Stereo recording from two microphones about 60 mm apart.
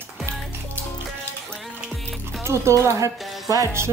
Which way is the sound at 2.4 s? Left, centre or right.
Right.